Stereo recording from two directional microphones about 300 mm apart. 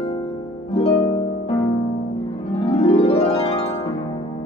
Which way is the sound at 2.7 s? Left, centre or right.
Centre.